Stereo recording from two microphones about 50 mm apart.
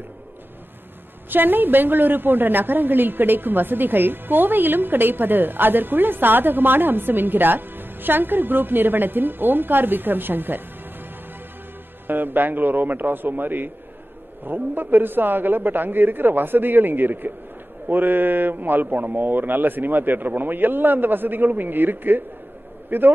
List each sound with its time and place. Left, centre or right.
1.3 s a woman's voice: right
12.1 s a woman's voice: right